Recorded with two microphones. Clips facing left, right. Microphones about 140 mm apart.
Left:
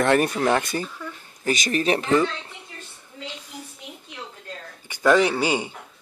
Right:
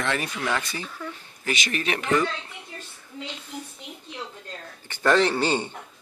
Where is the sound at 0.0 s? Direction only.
50° left (ahead or behind).